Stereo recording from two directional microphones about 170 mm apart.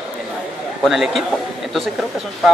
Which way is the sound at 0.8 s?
Centre (ahead or behind).